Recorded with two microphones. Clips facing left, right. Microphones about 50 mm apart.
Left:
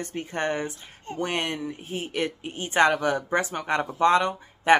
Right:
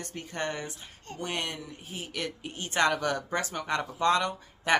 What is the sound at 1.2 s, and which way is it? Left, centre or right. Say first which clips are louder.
Speech: left 6 dB; left.